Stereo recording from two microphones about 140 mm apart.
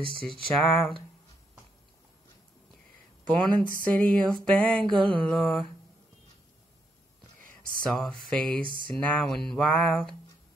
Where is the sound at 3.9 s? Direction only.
5° left (ahead or behind).